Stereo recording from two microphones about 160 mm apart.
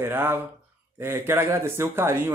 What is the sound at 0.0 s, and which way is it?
Speech, 15° right (ahead or behind).